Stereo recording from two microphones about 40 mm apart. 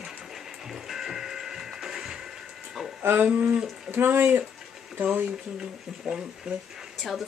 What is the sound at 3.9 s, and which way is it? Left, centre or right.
Speech, right.